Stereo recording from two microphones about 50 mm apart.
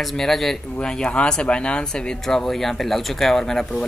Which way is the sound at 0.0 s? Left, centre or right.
Centre.